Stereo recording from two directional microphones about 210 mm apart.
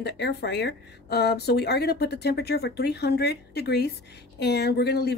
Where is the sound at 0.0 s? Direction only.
50° left (ahead or behind).